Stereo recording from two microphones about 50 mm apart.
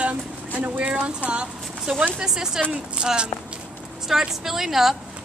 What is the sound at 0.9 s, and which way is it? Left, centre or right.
Speech, right.